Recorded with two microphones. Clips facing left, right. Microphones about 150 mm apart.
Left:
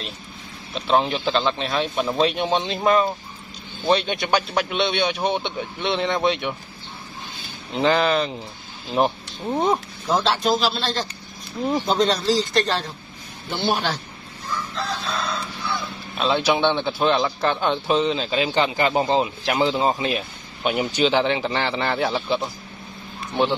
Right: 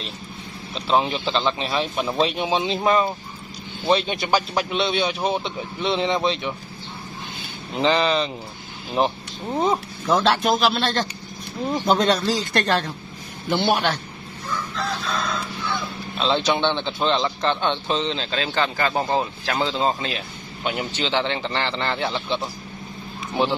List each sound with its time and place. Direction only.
0.7 s a man's voice: centre (ahead or behind)
7.7 s a man's voice: centre (ahead or behind)
10.0 s a man's voice: 55° right (ahead or behind)
16.2 s a man's voice: 10° left (ahead or behind)